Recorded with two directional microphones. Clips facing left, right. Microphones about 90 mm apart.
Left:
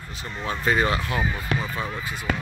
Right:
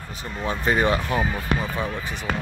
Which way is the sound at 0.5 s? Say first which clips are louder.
Right 1 dB; 15° right (ahead or behind).